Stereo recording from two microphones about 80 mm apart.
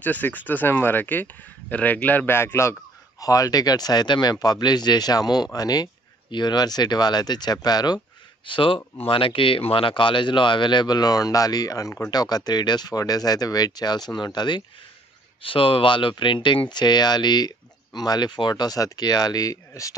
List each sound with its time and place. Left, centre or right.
0.0 s speech: left
3.2 s speech: left
6.3 s speech: left
8.5 s speech: left
15.4 s speech: left